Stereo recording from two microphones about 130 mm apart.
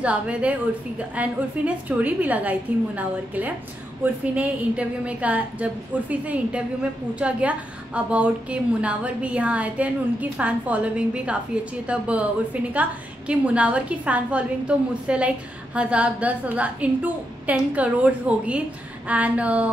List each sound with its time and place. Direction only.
0.0 s a woman's voice: 10° right (ahead or behind)
13.3 s a woman's voice: 10° right (ahead or behind)